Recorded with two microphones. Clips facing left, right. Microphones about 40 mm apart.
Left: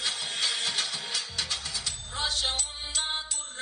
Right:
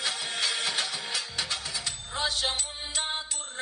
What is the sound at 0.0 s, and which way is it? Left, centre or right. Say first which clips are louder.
Music: right 1 dB; right.